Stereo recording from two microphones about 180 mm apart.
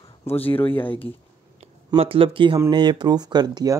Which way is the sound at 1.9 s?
30° right (ahead or behind).